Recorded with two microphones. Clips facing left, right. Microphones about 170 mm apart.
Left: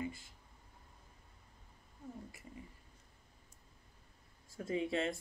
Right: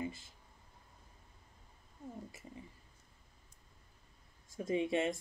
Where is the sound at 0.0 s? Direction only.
25° right (ahead or behind).